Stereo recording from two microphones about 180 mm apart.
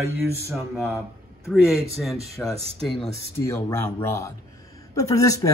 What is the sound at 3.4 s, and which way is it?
Speech, 15° left (ahead or behind).